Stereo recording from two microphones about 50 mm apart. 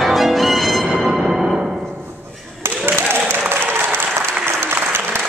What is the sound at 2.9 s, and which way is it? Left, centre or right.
Applause, right.